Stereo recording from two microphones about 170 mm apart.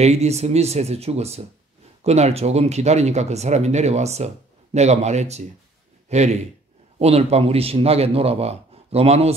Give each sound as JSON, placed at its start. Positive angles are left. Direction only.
{"t": 0.0, "sound": "a man's voice", "side_deg": -40}